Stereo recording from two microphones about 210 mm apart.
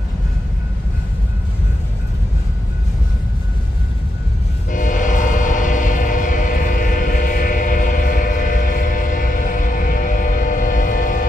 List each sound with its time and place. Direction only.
4.6 s train: 40° left (ahead or behind)